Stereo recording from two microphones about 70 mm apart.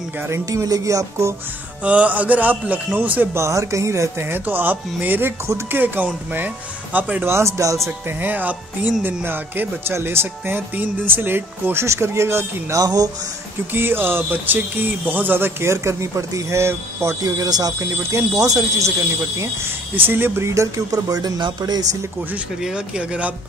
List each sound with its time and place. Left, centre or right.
0.3 s speech: right
0.7 s speech: right
1.8 s a man's voice: centre
3.3 s a man's voice: right
7.2 s speech: right
8.2 s a man's voice: right
12.7 s speech: right
13.7 s speech: right
17.2 s speech: right
17.7 s speech: right
19.4 s speech: right
22.6 s speech: centre